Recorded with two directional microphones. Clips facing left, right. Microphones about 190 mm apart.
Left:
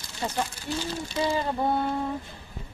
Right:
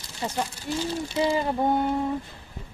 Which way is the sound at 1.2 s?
20° right (ahead or behind).